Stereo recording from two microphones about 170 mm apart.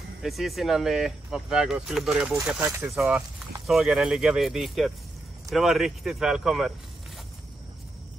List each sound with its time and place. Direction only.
0.2 s speech: centre (ahead or behind)
2.3 s speech: 15° right (ahead or behind)
2.9 s speech: 5° right (ahead or behind)